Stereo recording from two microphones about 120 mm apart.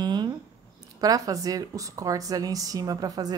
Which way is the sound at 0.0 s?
35° right (ahead or behind).